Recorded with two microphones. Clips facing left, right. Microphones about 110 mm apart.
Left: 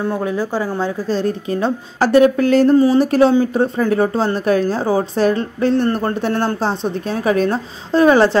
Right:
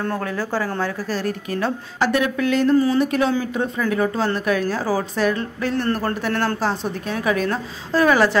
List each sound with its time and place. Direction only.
0.0 s a woman's voice: 15° left (ahead or behind)
2.0 s a woman's voice: 35° left (ahead or behind)